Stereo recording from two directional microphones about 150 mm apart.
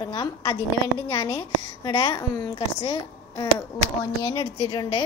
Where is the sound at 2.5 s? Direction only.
35° left (ahead or behind).